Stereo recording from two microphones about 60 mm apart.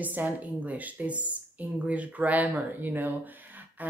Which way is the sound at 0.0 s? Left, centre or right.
Right.